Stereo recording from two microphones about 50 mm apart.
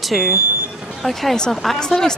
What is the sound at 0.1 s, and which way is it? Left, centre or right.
Speech, centre.